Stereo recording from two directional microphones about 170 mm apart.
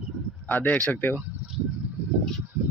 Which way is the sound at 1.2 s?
10° right (ahead or behind).